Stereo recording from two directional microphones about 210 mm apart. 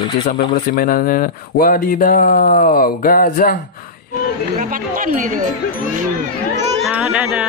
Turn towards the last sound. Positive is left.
turn(degrees=-5)  # may be behind; listen again after turning